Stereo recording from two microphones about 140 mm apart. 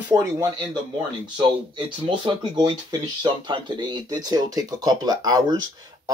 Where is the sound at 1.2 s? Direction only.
35° right (ahead or behind).